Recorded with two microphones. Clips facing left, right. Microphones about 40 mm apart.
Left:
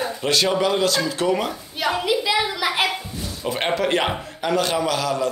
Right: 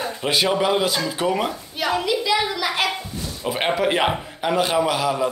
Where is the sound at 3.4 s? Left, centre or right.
Centre.